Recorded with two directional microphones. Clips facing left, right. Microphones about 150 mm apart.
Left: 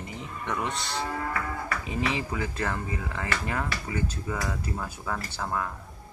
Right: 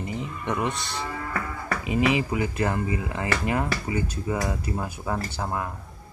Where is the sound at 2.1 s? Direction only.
15° right (ahead or behind).